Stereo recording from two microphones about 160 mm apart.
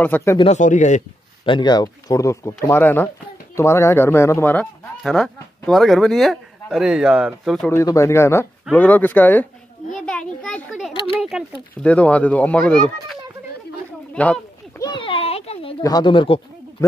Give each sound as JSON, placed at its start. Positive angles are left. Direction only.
{"t": 0.0, "sound": "speech", "side_deg": 15}
{"t": 0.4, "sound": "speech", "side_deg": 45}
{"t": 1.4, "sound": "speech", "side_deg": 30}
{"t": 7.7, "sound": "speech", "side_deg": 20}
{"t": 11.8, "sound": "speech", "side_deg": 10}
{"t": 14.8, "sound": "a sound", "side_deg": 30}
{"t": 15.8, "sound": "speech", "side_deg": 25}